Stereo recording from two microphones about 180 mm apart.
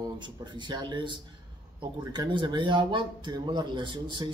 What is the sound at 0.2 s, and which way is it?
Speech, 25° right (ahead or behind).